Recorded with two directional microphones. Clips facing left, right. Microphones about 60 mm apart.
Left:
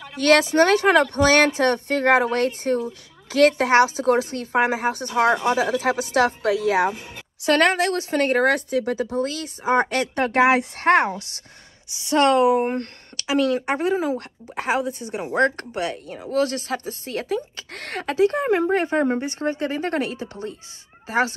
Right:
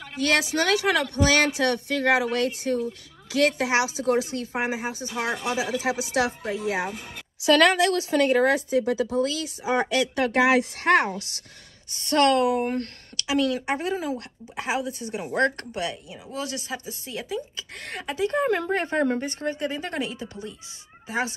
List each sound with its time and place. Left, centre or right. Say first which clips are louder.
0.2 s speech: left 7 dB; left
6.4 s speech: left 8 dB; left
7.4 s speech: even; left
8.9 s speech: even; left
11.9 s a woman's voice: left 3 dB; centre
12.2 s speech: left 3 dB; left
16.2 s speech: left 13 dB; left
18.1 s speech: left 4 dB; left